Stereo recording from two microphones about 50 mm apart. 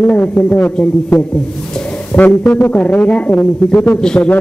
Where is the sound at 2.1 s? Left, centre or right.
Left.